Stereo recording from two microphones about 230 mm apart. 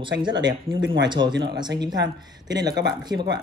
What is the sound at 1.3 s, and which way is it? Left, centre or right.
Speech, right.